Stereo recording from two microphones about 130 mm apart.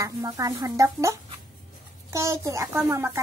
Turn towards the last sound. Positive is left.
turn(degrees=-25)  # may be behind; listen again after turning